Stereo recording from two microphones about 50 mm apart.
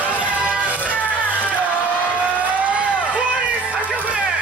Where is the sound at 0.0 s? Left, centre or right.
Right.